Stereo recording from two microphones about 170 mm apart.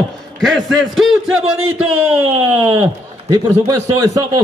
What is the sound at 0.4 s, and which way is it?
A man's voice, centre (ahead or behind).